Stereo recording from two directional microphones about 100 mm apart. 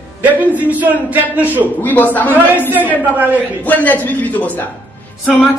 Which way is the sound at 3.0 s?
15° right (ahead or behind).